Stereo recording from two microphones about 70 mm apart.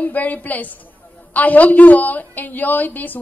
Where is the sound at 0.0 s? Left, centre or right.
Left.